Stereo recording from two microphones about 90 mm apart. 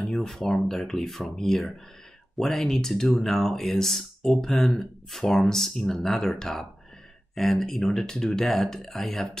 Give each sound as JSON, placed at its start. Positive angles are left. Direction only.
{"t": 0.0, "sound": "speech", "side_deg": 0}